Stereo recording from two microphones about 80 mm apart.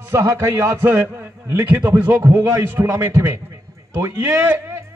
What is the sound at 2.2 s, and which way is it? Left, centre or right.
A man's voice, right.